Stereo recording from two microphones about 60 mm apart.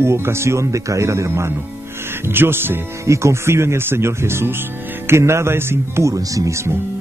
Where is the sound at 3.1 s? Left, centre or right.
Right.